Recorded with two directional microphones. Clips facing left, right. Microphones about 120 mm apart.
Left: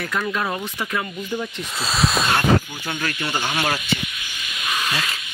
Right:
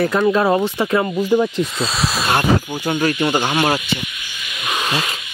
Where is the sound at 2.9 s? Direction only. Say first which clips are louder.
Right 9 dB; 35° right (ahead or behind).